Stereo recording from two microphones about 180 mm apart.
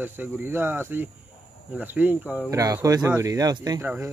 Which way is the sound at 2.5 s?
20° right (ahead or behind).